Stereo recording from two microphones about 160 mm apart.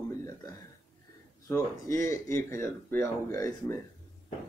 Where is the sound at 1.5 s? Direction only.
20° left (ahead or behind).